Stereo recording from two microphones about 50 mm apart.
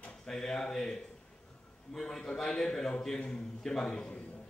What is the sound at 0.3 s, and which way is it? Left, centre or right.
Speech, centre.